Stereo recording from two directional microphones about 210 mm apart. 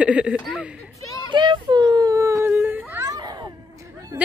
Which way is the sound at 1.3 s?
20° right (ahead or behind).